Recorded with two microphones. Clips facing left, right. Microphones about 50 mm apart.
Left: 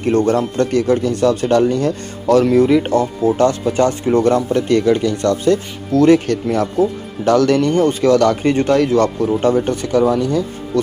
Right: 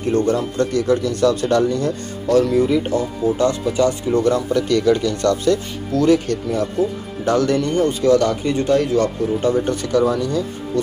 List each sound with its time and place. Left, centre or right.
0.0 s speech: left
0.3 s speech: left
1.2 s speech: left
1.5 s speech: left
2.5 s speech: left
6.0 s speech: left
9.7 s speech: left